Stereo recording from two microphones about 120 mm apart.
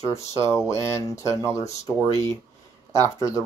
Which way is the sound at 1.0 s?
25° left (ahead or behind).